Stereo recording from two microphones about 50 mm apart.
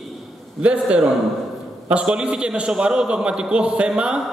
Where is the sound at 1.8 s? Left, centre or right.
Right.